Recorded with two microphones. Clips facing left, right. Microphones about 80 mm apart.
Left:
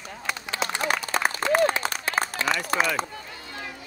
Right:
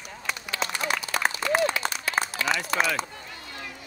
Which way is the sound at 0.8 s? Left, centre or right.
Left.